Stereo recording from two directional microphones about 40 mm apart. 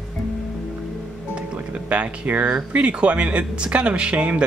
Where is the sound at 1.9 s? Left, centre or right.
Right.